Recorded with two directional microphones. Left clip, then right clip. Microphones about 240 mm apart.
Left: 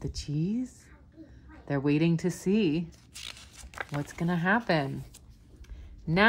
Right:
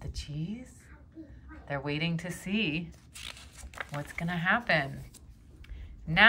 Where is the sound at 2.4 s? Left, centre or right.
Centre.